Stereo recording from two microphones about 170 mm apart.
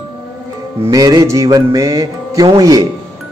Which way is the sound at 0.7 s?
20° right (ahead or behind).